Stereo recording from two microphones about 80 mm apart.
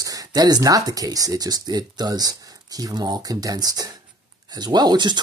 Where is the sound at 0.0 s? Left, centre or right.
Right.